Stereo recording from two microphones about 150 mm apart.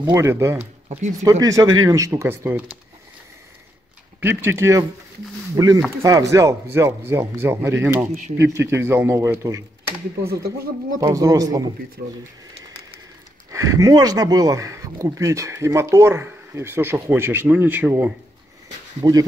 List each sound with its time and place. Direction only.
0.0 s speech: 15° right (ahead or behind)
0.6 s speech: 45° right (ahead or behind)
1.2 s speech: 20° right (ahead or behind)
4.2 s speech: 15° right (ahead or behind)
5.9 s speech: 20° right (ahead or behind)
10.3 s speech: 90° right
11.0 s speech: 25° right (ahead or behind)
12.0 s speech: 90° right
13.5 s speech: 20° right (ahead or behind)
19.0 s speech: 30° right (ahead or behind)